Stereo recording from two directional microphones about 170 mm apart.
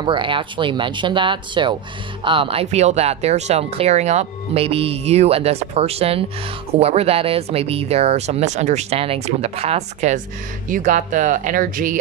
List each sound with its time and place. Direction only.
0.0 s speech: 30° right (ahead or behind); by 12.0 s 55° right (ahead or behind)